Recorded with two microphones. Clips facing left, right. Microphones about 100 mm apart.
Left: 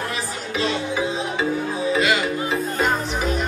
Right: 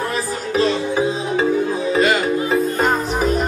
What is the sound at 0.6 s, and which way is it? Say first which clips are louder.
Music: right 5 dB; 40° right (ahead or behind).